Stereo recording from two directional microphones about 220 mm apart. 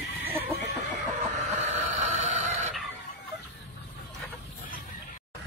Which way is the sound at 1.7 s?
30° right (ahead or behind).